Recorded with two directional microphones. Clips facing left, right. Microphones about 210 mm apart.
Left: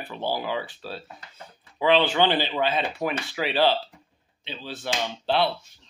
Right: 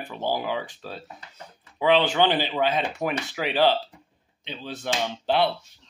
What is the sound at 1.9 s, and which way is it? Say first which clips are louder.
Speech: even; 15° right (ahead or behind).